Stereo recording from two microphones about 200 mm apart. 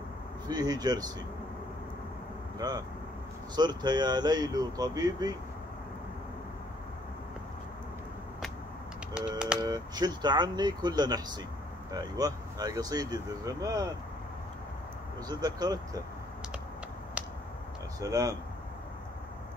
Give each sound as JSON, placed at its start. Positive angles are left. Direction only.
{"t": 0.5, "sound": "speech", "side_deg": -20}
{"t": 3.5, "sound": "speech", "side_deg": -20}
{"t": 9.2, "sound": "speech", "side_deg": -5}
{"t": 9.6, "sound": "speech", "side_deg": -20}
{"t": 15.2, "sound": "speech", "side_deg": -20}
{"t": 18.0, "sound": "speech", "side_deg": -15}